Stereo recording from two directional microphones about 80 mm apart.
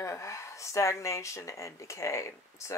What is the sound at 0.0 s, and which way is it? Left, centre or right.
Speech, left.